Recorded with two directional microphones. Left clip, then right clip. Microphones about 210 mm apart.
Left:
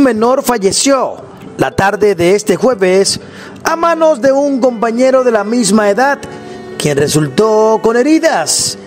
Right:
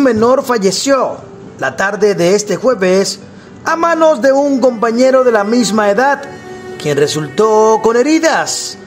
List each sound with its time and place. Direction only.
0.0 s a man's voice: 40° left (ahead or behind)